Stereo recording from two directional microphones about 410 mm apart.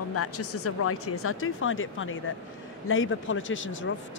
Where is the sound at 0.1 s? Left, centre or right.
Left.